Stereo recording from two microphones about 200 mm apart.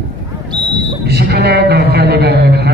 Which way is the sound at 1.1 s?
55° right (ahead or behind).